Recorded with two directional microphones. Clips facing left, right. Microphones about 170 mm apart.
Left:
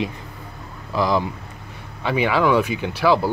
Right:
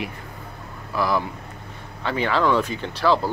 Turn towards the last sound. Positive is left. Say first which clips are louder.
# left 2 dB
turn(degrees=10)  # may be behind; listen again after turning